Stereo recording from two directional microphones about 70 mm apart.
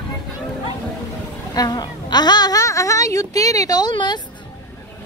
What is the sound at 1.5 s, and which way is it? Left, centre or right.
Speech, left.